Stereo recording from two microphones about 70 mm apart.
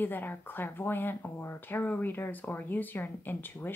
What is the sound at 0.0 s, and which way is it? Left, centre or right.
Speech, left.